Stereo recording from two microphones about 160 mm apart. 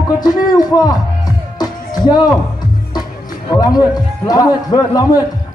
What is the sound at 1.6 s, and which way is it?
Music, 25° left (ahead or behind).